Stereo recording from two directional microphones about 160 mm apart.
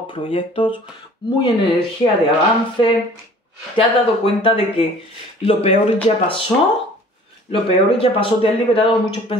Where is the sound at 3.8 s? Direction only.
35° left (ahead or behind).